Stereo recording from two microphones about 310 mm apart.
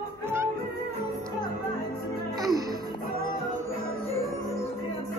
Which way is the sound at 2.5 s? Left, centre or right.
Right.